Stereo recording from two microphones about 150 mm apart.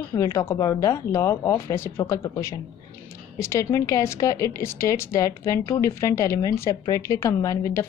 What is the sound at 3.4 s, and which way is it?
A woman's voice, 20° left (ahead or behind).